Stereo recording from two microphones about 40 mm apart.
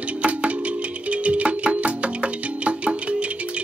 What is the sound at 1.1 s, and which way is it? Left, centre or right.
Music, right.